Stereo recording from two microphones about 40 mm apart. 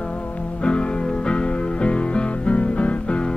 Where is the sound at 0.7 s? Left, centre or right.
Left.